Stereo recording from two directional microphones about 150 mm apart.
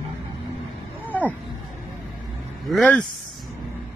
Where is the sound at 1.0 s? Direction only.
10° left (ahead or behind).